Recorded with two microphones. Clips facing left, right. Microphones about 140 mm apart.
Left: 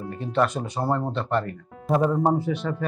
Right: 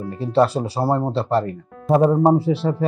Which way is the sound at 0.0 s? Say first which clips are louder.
Right 6 dB; 35° right (ahead or behind).